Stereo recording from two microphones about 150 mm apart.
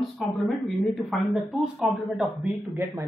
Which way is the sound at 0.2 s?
Centre (ahead or behind).